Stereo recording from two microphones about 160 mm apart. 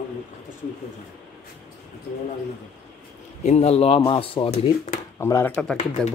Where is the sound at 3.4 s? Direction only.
40° left (ahead or behind).